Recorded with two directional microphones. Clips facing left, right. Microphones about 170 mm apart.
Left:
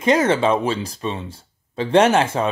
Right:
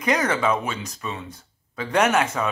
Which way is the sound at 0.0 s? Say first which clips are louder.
Left 5 dB; 25° left (ahead or behind).